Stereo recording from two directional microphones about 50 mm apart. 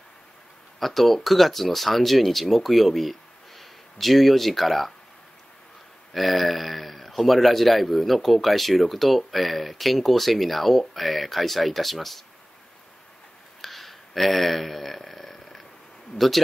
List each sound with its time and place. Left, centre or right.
0.7 s speech: centre
6.1 s speech: centre
13.6 s a sound: centre